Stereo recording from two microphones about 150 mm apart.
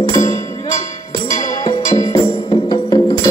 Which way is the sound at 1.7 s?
25° left (ahead or behind).